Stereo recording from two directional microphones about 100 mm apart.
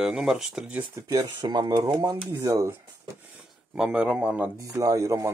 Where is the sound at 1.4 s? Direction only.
50° right (ahead or behind).